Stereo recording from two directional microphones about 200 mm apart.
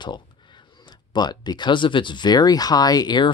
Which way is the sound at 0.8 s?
20° left (ahead or behind).